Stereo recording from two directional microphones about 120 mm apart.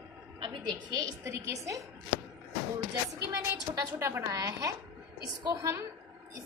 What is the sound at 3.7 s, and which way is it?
A woman's voice, 25° right (ahead or behind).